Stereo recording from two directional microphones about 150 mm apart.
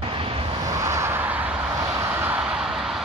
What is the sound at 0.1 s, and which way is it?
Vehicle, 35° right (ahead or behind).